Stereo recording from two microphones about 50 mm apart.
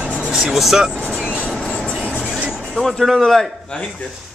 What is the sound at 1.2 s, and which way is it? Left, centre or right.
Train, left.